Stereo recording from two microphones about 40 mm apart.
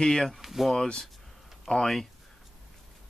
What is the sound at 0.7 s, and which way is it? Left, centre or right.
Speech, centre.